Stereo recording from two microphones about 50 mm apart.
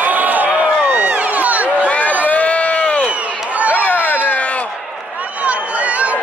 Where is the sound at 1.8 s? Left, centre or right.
Left.